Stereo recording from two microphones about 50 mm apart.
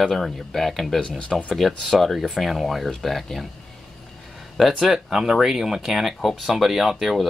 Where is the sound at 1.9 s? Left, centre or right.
Centre.